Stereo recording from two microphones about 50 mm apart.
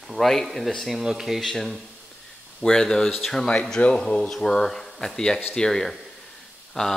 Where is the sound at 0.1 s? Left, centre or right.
Centre.